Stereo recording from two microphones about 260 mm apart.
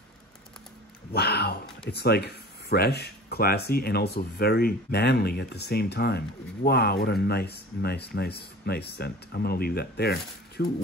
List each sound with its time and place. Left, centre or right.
1.1 s speech: left